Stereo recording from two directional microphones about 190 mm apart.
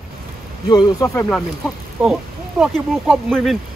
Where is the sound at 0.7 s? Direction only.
20° left (ahead or behind).